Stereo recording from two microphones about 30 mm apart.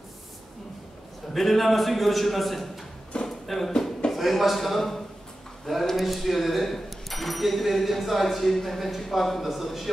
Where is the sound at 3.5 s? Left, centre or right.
Centre.